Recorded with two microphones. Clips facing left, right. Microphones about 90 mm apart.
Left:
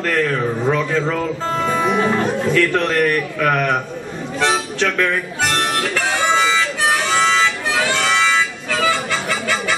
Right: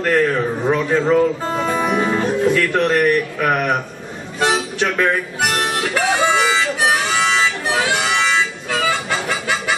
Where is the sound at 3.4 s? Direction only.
15° right (ahead or behind).